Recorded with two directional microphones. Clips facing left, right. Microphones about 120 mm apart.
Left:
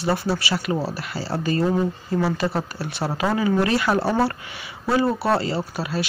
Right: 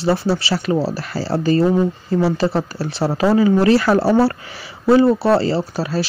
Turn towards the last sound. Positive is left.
turn(degrees=-35)  # may be behind; listen again after turning